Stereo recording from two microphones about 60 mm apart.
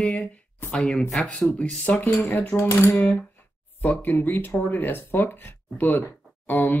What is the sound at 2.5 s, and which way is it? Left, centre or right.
Speech, left.